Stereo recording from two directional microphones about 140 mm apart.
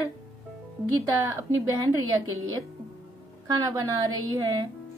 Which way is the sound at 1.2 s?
25° right (ahead or behind).